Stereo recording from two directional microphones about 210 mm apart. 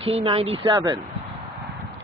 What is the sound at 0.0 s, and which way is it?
Speech, 25° right (ahead or behind).